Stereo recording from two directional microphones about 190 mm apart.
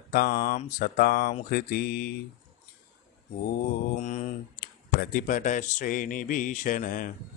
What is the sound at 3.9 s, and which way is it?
Speech, 40° left (ahead or behind).